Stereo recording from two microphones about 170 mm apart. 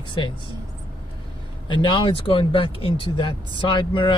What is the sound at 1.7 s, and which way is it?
Speech, 30° left (ahead or behind).